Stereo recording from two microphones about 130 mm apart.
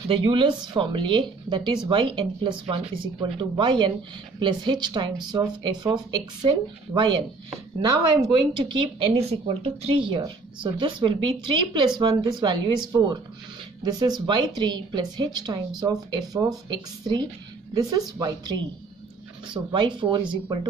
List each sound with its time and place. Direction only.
0.1 s speech: 45° right (ahead or behind)
13.8 s speech: 35° right (ahead or behind)